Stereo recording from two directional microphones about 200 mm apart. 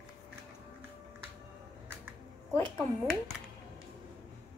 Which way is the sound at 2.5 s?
5° left (ahead or behind).